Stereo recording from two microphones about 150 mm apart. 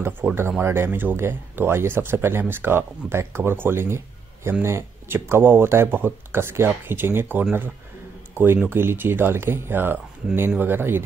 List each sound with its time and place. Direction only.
0.0 s speech: 15° right (ahead or behind)